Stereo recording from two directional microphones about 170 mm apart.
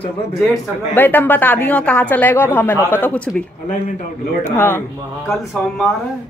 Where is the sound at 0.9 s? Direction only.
10° left (ahead or behind).